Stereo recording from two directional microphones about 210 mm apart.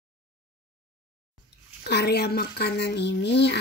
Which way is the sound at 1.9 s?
50° left (ahead or behind).